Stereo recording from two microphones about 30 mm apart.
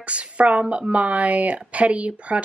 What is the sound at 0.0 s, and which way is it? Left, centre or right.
A woman's voice, right.